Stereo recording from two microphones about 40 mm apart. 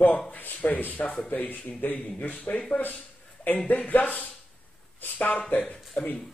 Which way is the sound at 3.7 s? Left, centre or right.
Left.